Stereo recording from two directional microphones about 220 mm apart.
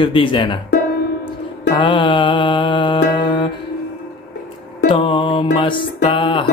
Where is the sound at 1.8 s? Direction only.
20° left (ahead or behind).